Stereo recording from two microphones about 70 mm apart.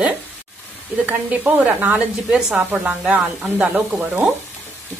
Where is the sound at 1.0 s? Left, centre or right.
Right.